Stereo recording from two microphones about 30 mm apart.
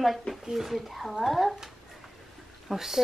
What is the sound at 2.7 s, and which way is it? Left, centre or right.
Speech, centre.